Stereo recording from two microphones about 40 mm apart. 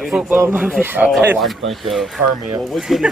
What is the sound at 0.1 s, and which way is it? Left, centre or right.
Speech, right.